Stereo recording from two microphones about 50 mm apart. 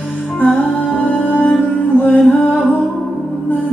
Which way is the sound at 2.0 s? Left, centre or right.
Left.